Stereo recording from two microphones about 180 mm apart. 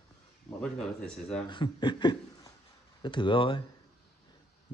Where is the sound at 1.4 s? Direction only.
25° left (ahead or behind).